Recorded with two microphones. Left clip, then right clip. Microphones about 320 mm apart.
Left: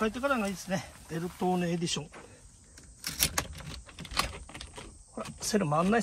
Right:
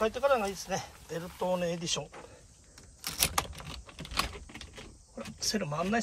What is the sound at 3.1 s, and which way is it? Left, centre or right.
Computer keyboard, centre.